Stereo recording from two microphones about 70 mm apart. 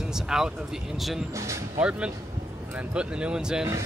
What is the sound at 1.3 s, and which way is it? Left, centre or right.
Speech, right.